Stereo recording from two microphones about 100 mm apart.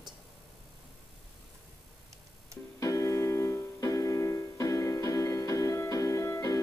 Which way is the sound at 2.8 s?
35° left (ahead or behind).